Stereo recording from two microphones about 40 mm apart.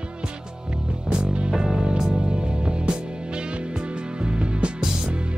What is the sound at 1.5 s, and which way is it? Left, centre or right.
Music, centre.